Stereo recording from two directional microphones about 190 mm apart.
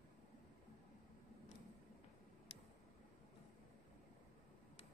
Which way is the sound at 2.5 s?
30° left (ahead or behind).